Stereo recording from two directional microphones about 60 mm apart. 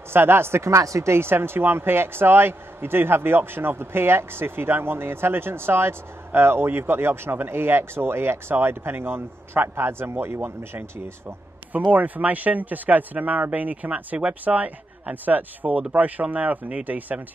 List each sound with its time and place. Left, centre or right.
0.1 s speech: right
0.7 s speech: right
10.8 s speech: right